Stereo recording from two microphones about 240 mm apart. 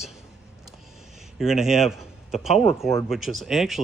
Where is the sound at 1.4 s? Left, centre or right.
Centre.